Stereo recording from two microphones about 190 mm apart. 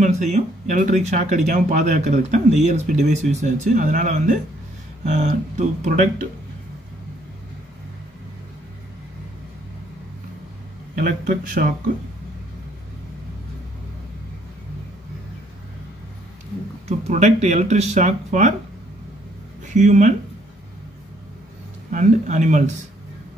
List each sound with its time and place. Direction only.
0.0 s speech: 35° right (ahead or behind)
11.0 s a man's voice: 50° right (ahead or behind)
16.8 s speech: 40° right (ahead or behind)
19.6 s speech: 40° right (ahead or behind)
21.9 s speech: 40° right (ahead or behind)